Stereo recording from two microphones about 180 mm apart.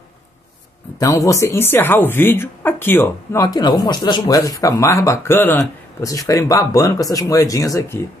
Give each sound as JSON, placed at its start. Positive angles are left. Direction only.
{"t": 0.9, "sound": "speech", "side_deg": 20}